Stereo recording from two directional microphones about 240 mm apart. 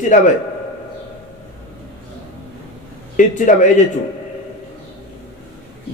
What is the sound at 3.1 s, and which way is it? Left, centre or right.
Speech, left.